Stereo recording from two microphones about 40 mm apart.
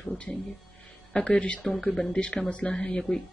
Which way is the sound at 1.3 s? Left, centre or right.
Left.